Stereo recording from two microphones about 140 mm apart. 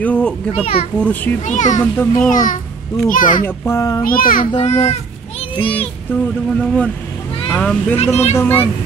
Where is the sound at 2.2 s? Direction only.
75° left (ahead or behind).